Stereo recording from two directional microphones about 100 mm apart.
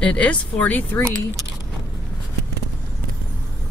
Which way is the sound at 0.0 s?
15° left (ahead or behind).